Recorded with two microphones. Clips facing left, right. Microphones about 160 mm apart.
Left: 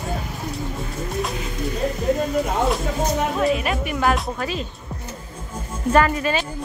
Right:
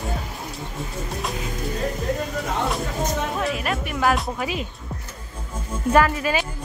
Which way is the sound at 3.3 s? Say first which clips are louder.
Left 4 dB; centre (ahead or behind).